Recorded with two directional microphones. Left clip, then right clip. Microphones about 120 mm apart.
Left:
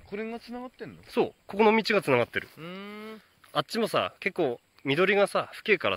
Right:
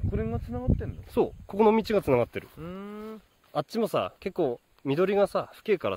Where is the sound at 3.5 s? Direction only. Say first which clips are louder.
Left 1 dB; 10° right (ahead or behind).